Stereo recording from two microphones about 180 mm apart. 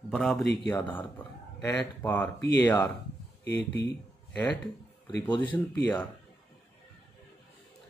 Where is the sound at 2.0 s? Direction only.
10° left (ahead or behind).